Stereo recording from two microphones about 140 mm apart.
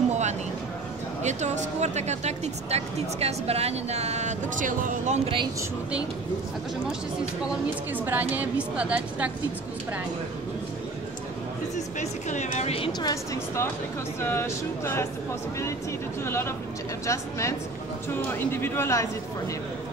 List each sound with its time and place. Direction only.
0.1 s vehicle: 55° right (ahead or behind)
1.2 s speech: 55° right (ahead or behind)
7.9 s a woman's voice: 15° right (ahead or behind)
11.7 s a woman's voice: 60° left (ahead or behind)
13.0 s a woman's voice: 25° left (ahead or behind)
16.3 s a woman's voice: 15° left (ahead or behind)